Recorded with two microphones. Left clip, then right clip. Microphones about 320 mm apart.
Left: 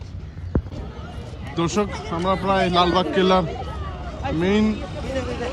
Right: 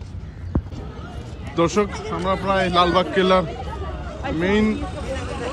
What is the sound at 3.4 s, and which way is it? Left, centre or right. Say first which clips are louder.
Speech: left 1 dB; left.